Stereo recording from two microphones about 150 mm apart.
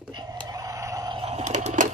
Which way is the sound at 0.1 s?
30° right (ahead or behind).